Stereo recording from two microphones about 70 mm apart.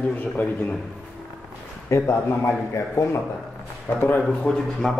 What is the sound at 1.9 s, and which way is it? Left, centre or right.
Speech, left.